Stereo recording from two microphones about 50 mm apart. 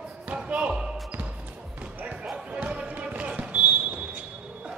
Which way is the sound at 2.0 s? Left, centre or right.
Right.